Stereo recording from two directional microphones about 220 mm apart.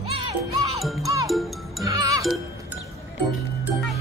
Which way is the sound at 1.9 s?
15° right (ahead or behind).